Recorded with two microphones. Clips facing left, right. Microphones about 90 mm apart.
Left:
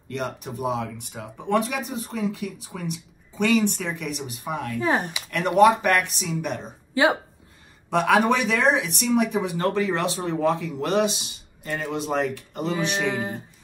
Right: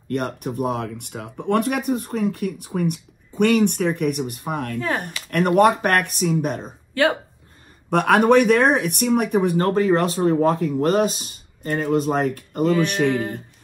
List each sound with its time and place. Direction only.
0.1 s speech: 50° right (ahead or behind)
6.9 s a sound: 15° left (ahead or behind)
7.9 s speech: 55° right (ahead or behind)
13.1 s music: 20° left (ahead or behind)